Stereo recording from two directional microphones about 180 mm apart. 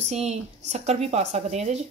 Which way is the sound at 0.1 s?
40° right (ahead or behind).